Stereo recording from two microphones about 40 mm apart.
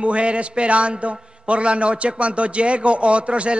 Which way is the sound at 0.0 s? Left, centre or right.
Right.